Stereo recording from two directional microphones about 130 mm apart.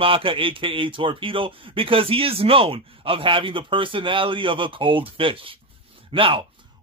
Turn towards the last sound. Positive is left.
turn(degrees=-45)  # may be behind; listen again after turning